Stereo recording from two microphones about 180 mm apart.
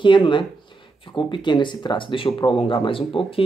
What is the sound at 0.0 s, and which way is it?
Speech, 25° left (ahead or behind).